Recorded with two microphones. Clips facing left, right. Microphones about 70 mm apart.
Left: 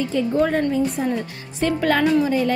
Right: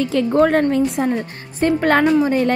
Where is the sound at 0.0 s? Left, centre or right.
Right.